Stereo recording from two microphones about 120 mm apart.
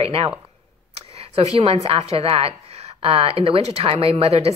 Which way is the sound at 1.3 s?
55° right (ahead or behind).